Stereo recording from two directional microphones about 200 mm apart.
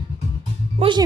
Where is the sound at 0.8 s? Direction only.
30° right (ahead or behind).